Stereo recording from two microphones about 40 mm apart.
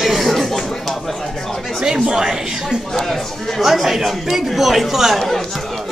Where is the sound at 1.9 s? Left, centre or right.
Centre.